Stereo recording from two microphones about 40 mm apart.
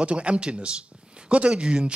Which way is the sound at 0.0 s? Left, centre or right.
Right.